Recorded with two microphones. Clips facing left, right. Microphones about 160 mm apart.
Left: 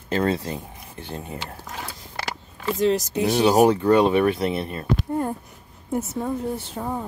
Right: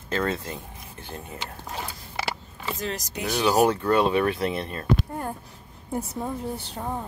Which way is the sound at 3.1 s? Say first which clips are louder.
Even; 25° left (ahead or behind).